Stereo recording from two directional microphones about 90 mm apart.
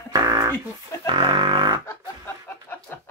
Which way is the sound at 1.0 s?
65° right (ahead or behind).